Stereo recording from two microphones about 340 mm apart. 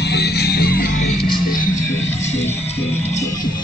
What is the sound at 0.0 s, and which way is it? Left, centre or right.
Music, left.